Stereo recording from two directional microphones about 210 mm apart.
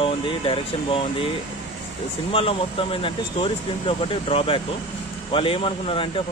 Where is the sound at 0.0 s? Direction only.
25° left (ahead or behind).